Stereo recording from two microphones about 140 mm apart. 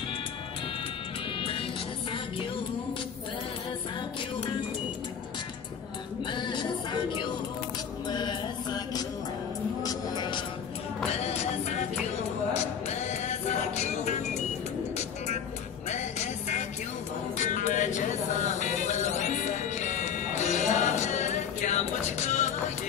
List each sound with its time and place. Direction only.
1.4 s music: 40° left (ahead or behind)
6.2 s music: 35° left (ahead or behind)
8.1 s mantra: 30° left (ahead or behind)
9.8 s music: 30° left (ahead or behind)
11.1 s music: 50° left (ahead or behind)
12.8 s music: 50° left (ahead or behind)
15.9 s music: 55° left (ahead or behind)